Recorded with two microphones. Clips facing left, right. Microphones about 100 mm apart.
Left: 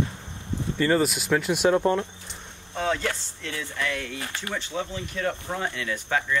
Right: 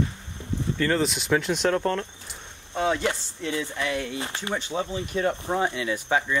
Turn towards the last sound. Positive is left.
turn(degrees=-15)  # may be behind; listen again after turning